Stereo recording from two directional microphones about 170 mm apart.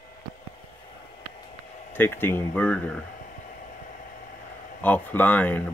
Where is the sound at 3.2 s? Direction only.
50° left (ahead or behind).